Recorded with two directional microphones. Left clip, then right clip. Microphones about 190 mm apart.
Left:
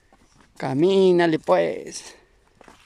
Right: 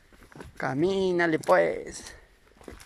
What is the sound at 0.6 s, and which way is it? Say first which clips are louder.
Speech: left 8 dB; 20° left (ahead or behind).